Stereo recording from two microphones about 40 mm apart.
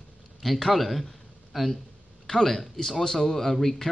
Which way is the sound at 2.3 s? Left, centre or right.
Centre.